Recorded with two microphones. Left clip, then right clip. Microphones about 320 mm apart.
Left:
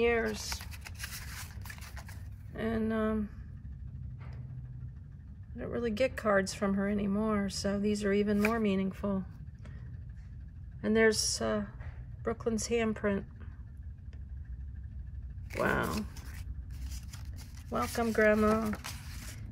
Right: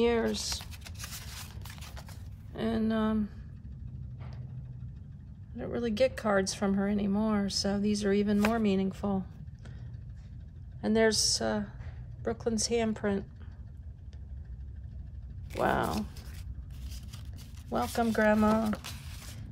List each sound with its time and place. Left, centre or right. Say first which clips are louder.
0.0 s a sound: right 1 dB; centre
2.5 s speech: right 2 dB; centre
5.6 s speech: right 3 dB; centre
10.8 s speech: right 1 dB; centre
15.6 s speech: right 2 dB; centre
17.6 s speech: right 2 dB; centre